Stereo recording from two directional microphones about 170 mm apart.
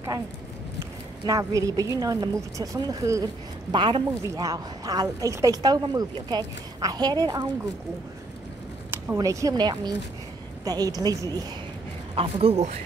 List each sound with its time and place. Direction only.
1.2 s a woman's voice: 20° right (ahead or behind)
8.9 s a woman's voice: 15° right (ahead or behind)
12.2 s speech: 35° right (ahead or behind)